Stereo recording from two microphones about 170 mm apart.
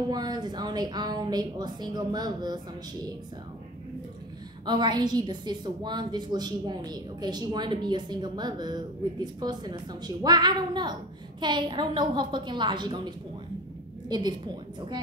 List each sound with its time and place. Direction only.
0.1 s a woman's voice: 25° right (ahead or behind)
4.6 s a woman's voice: 25° right (ahead or behind)